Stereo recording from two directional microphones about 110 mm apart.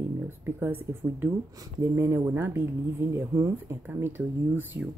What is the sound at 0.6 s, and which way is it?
A woman's voice, 20° right (ahead or behind).